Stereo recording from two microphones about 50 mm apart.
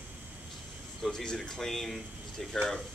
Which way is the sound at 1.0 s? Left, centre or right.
Centre.